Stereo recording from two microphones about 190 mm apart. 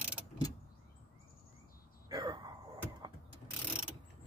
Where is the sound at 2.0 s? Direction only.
20° right (ahead or behind).